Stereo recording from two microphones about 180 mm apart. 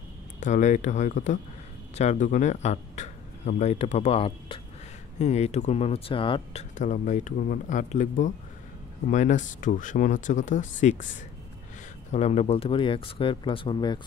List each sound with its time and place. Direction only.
0.4 s a man's voice: 40° left (ahead or behind)
6.8 s speech: 45° left (ahead or behind)
12.1 s speech: 35° left (ahead or behind)